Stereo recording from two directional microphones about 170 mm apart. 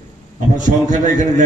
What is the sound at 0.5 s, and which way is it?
Speech, 45° right (ahead or behind).